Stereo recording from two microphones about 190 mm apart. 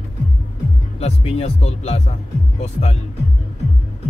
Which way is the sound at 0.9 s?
35° left (ahead or behind).